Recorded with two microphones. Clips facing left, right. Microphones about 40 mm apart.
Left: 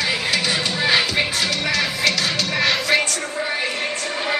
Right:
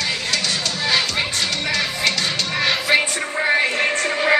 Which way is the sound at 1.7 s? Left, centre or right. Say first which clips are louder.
Even; centre.